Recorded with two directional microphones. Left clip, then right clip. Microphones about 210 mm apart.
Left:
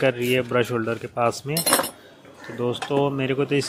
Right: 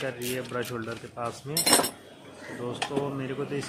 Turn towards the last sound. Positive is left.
turn(degrees=30)  # may be behind; listen again after turning